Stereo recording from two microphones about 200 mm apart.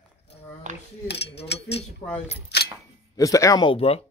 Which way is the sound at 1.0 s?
55° left (ahead or behind).